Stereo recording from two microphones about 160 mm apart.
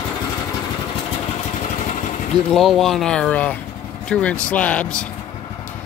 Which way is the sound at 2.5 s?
Centre (ahead or behind).